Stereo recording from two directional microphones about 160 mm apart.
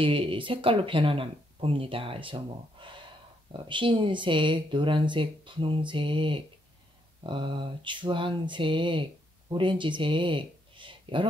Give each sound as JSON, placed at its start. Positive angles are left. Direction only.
{"t": 0.0, "sound": "speech", "side_deg": -35}